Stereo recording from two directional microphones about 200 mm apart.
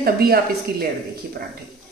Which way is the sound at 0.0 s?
50° right (ahead or behind).